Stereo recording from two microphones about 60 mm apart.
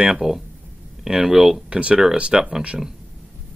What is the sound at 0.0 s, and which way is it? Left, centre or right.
Speech, centre.